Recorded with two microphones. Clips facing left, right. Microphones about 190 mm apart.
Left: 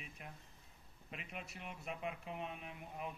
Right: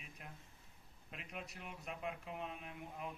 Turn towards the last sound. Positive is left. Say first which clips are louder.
# left 1 dB
turn(degrees=0)  # may be behind; listen again after turning